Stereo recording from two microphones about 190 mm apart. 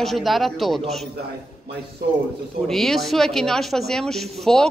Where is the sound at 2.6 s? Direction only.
Centre (ahead or behind).